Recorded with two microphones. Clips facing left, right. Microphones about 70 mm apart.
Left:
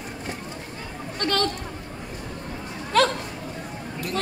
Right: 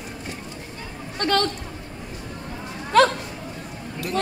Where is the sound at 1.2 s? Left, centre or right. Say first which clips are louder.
Right 3 dB; right.